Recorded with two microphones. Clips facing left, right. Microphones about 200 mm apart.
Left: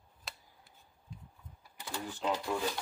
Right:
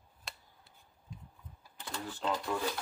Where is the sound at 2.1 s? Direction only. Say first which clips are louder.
Left 1 dB; 5° left (ahead or behind).